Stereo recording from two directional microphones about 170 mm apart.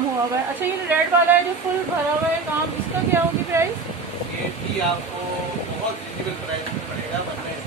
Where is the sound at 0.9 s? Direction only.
10° right (ahead or behind).